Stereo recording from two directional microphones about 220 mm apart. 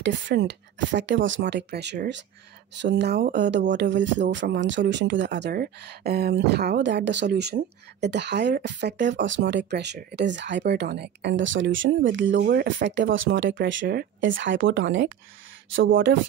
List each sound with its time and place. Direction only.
0.0 s speech: 50° right (ahead or behind)